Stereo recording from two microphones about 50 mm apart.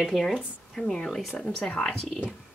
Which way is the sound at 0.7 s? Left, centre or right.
Centre.